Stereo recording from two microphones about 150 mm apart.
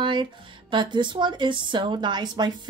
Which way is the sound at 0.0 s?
30° right (ahead or behind).